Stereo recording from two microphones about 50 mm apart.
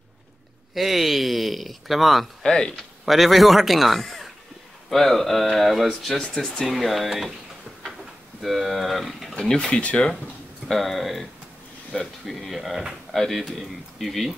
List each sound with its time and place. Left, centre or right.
0.7 s speech: centre
2.4 s speech: centre
2.7 s speech: centre
6.1 s speech: centre
6.6 s speech: centre
8.4 s speech: centre
9.4 s speech: centre
10.7 s speech: centre